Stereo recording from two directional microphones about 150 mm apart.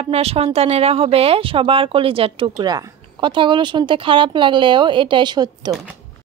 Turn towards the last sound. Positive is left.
turn(degrees=-30)  # may be behind; listen again after turning